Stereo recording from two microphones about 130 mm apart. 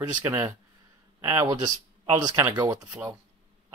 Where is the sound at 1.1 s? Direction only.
25° right (ahead or behind).